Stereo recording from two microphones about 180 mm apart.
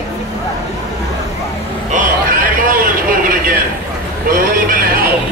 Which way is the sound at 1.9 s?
50° right (ahead or behind).